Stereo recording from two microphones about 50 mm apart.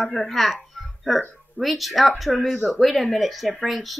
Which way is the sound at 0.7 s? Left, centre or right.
Centre.